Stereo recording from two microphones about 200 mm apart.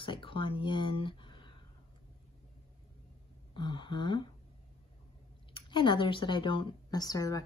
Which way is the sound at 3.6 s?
25° left (ahead or behind).